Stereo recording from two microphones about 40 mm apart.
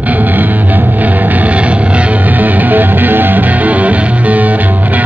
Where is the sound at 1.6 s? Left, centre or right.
Right.